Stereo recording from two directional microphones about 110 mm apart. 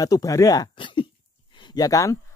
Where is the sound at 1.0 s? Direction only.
55° left (ahead or behind).